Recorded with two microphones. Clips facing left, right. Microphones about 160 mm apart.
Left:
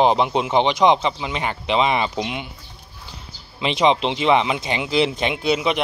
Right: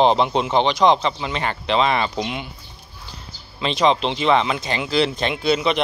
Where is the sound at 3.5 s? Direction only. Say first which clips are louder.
Even; 20° left (ahead or behind).